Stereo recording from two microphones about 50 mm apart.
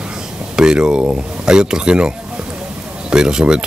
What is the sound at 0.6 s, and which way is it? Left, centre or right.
Speech, centre.